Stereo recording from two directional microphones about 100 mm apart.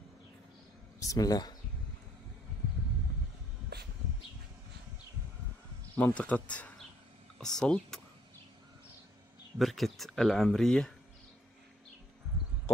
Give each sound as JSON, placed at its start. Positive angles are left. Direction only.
{"t": 0.9, "sound": "speech", "side_deg": 35}
{"t": 5.9, "sound": "speech", "side_deg": 15}
{"t": 9.6, "sound": "speech", "side_deg": 0}